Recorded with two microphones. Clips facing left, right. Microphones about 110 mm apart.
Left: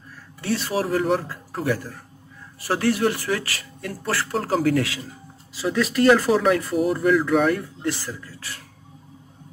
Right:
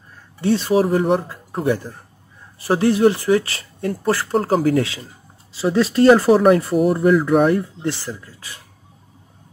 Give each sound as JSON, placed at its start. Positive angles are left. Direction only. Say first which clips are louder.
{"t": 0.4, "sound": "speech", "louder": "right 8 dB", "side_deg": -20}
{"t": 4.4, "sound": "speech", "louder": "right 2 dB", "side_deg": -45}
{"t": 5.5, "sound": "speech", "louder": "right 5 dB", "side_deg": -30}
{"t": 6.7, "sound": "speech", "louder": "right 4 dB", "side_deg": -5}
{"t": 7.4, "sound": "speech", "louder": "right 4 dB", "side_deg": -25}